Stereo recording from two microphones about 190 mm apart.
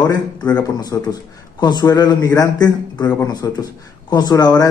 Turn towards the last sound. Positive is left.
turn(degrees=20)  # may be behind; listen again after turning